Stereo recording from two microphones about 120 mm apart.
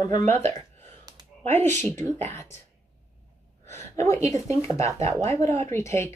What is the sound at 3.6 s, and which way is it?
A woman's voice, 25° left (ahead or behind).